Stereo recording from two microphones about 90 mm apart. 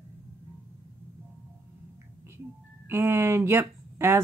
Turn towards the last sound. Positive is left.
turn(degrees=-25)  # may be behind; listen again after turning